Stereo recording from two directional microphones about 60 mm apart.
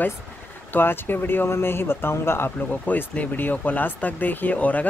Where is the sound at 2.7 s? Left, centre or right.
Left.